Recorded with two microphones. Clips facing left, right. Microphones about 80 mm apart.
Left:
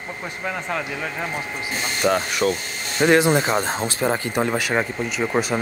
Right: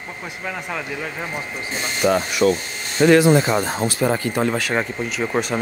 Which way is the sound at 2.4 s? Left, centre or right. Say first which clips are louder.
Right 5 dB; right.